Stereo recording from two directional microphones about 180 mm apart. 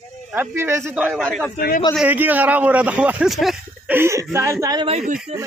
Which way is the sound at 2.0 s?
10° right (ahead or behind).